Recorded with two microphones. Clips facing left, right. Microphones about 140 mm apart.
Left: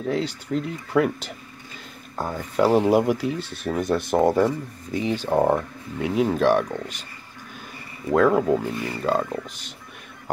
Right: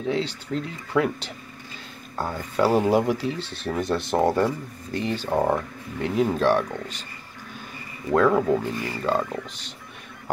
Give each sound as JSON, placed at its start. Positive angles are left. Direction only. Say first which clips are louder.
{"t": 0.0, "sound": "speech", "louder": "left 1 dB", "side_deg": 5}
{"t": 2.6, "sound": "speech", "louder": "left 2 dB", "side_deg": -10}
{"t": 2.9, "sound": "speech", "louder": "left 2 dB", "side_deg": 10}
{"t": 8.1, "sound": "speech", "louder": "left 1 dB", "side_deg": 5}